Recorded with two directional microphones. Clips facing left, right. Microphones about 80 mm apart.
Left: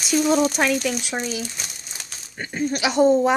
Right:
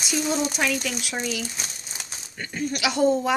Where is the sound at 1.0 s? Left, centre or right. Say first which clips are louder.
Left 2 dB; left.